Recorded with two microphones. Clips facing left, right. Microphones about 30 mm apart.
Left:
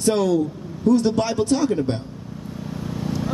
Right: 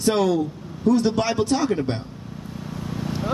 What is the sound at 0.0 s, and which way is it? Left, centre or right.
Speech, centre.